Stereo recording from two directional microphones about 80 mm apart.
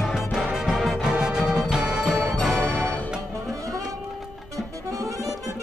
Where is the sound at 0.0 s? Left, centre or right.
Centre.